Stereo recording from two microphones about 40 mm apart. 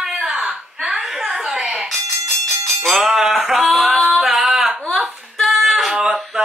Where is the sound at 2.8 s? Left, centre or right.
Centre.